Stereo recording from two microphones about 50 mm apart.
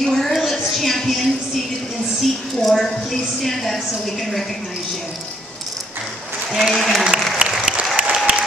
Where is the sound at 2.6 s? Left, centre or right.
Centre.